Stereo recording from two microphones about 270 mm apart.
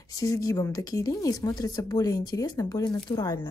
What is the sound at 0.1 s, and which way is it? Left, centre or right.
Speech, centre.